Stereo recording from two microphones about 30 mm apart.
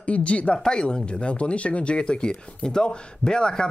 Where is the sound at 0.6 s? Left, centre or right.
Left.